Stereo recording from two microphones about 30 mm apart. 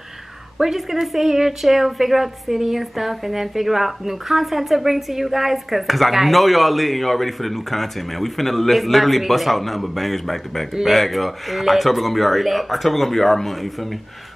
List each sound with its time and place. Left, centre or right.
0.6 s speech: centre
1.6 s a woman's voice: centre